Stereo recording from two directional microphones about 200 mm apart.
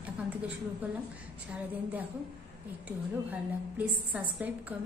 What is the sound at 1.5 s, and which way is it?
Speech, 10° right (ahead or behind).